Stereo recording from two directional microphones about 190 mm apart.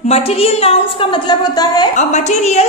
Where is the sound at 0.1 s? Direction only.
30° left (ahead or behind).